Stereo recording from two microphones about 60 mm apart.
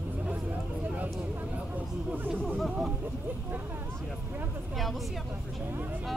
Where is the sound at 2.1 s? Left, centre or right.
Right.